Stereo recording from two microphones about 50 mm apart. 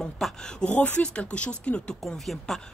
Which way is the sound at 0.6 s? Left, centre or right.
Left.